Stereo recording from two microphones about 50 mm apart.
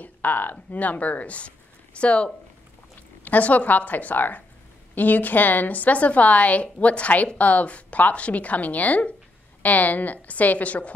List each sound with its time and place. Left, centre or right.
0.0 s a woman's voice: left